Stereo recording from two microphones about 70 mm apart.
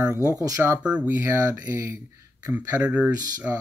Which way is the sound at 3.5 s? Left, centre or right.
Right.